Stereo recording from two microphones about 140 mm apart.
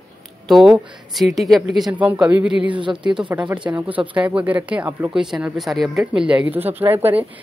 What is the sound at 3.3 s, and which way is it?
Speech, 10° right (ahead or behind).